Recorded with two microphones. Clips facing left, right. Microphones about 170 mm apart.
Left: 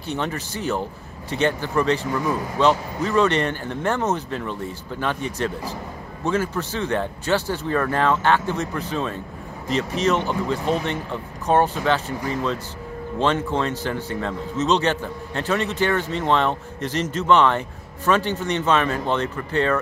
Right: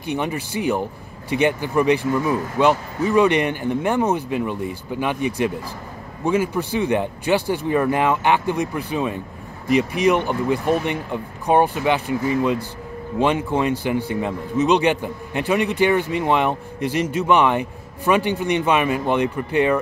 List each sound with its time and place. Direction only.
0.0 s a man's voice: 15° right (ahead or behind)